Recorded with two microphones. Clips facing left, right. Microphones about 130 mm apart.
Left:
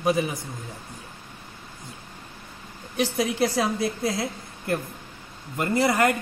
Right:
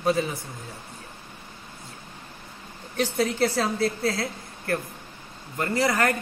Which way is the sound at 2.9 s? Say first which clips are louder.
Even; 10° left (ahead or behind).